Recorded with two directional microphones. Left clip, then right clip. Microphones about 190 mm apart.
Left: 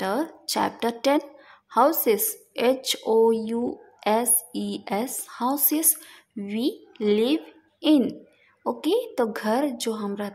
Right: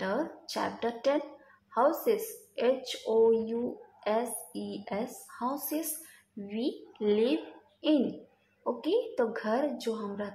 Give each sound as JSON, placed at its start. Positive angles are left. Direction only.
{"t": 0.0, "sound": "a woman's voice", "side_deg": 40}
{"t": 8.6, "sound": "a woman's voice", "side_deg": 40}